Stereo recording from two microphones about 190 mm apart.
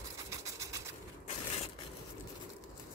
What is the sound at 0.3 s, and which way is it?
Vehicle, 15° right (ahead or behind).